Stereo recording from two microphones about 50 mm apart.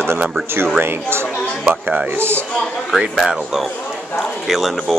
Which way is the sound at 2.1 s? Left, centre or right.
Right.